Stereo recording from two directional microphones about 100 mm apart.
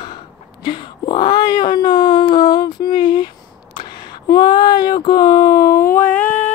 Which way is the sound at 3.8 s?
50° left (ahead or behind).